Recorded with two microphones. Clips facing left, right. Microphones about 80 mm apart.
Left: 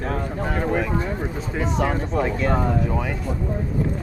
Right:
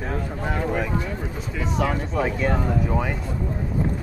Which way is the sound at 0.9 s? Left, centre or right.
Left.